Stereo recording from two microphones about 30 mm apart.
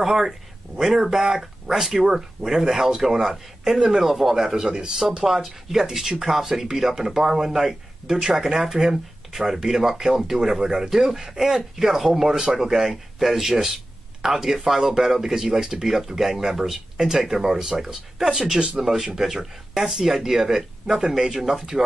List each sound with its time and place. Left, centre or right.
0.0 s speech: centre
4.6 s speech: right
5.2 s speech: centre
13.5 s speech: centre